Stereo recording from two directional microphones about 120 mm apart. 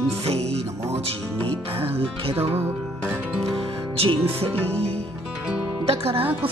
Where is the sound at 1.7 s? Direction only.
50° right (ahead or behind).